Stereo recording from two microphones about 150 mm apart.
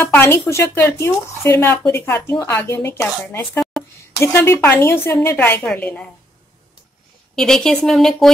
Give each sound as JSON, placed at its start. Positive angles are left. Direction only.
{"t": 0.0, "sound": "speech", "side_deg": 15}
{"t": 3.8, "sound": "a sound", "side_deg": 0}
{"t": 4.2, "sound": "speech", "side_deg": 15}
{"t": 7.3, "sound": "speech", "side_deg": 5}